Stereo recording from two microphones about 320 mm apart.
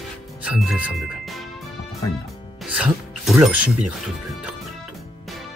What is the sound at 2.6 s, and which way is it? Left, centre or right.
Speech, centre.